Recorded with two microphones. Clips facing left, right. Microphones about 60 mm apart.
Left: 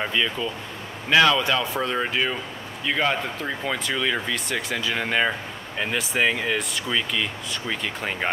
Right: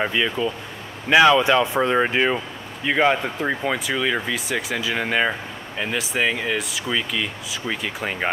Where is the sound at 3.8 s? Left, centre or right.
Centre.